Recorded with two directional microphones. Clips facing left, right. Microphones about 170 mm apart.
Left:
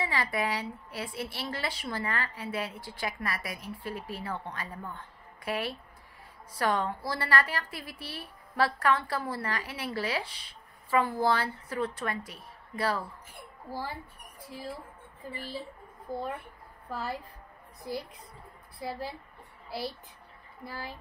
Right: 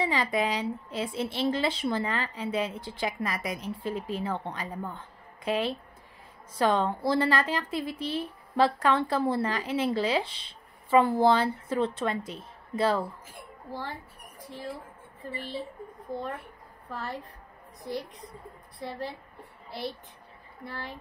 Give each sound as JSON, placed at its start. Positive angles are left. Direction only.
{"t": 0.0, "sound": "a woman's voice", "side_deg": -20}
{"t": 13.3, "sound": "a child's voice", "side_deg": 5}
{"t": 16.1, "sound": "a woman's voice", "side_deg": 5}
{"t": 18.8, "sound": "a woman's voice", "side_deg": 5}